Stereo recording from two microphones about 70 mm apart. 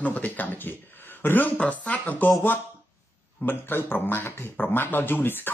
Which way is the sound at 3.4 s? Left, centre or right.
Left.